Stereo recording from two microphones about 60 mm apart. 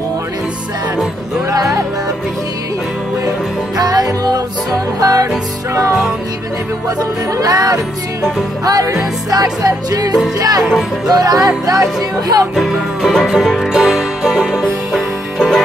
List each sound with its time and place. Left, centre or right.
1.5 s music: right
3.7 s music: right
5.0 s music: right
7.0 s music: right
12.5 s music: centre